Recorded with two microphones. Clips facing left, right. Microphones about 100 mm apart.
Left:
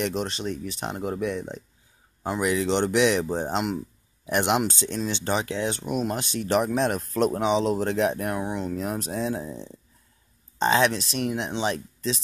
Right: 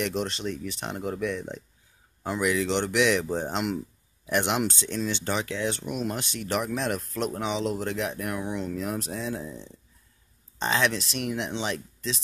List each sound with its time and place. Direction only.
0.0 s speech: 20° left (ahead or behind)
0.5 s speech: 30° left (ahead or behind)
10.6 s speech: 30° left (ahead or behind)